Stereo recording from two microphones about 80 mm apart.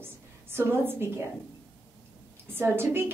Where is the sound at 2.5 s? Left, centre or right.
Right.